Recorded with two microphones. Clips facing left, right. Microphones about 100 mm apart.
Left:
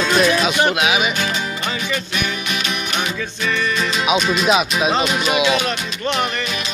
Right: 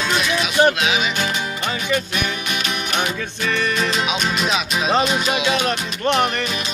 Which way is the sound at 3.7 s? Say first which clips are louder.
Even; 30° right (ahead or behind).